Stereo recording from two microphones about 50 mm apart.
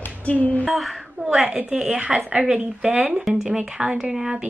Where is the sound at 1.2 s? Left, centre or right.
Right.